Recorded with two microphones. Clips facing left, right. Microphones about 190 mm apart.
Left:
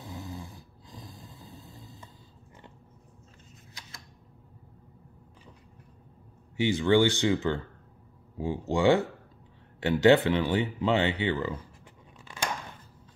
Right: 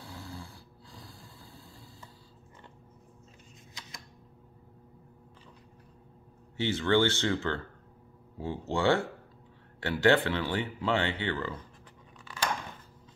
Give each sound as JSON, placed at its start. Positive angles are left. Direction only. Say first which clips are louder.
{"t": 0.0, "sound": "snoring", "louder": "left 4 dB", "side_deg": 20}
{"t": 6.5, "sound": "speech", "louder": "left 3 dB", "side_deg": 15}